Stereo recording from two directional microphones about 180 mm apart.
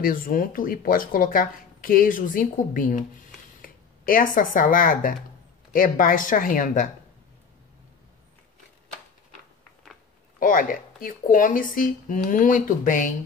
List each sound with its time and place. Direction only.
0.0 s speech: 50° left (ahead or behind)
10.4 s speech: 50° left (ahead or behind)